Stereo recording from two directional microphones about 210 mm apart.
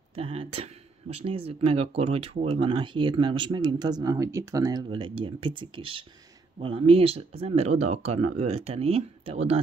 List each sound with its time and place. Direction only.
0.1 s speech: 25° right (ahead or behind)